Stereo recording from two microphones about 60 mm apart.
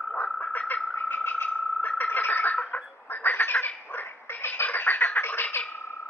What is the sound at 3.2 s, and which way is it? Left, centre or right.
Duck, left.